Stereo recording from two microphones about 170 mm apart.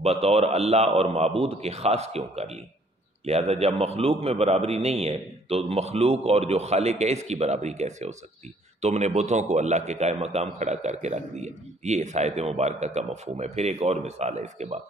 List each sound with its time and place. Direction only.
0.0 s a man's voice: 40° right (ahead or behind)